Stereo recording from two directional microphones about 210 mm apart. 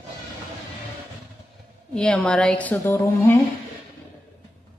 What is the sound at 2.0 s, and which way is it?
A woman's voice, 5° left (ahead or behind).